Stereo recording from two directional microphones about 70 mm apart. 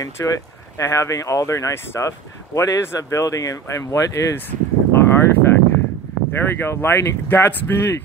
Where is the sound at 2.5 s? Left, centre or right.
Left.